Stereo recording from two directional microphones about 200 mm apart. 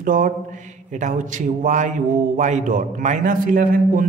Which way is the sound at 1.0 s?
40° right (ahead or behind).